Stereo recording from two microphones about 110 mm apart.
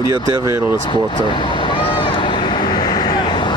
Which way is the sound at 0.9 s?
45° left (ahead or behind).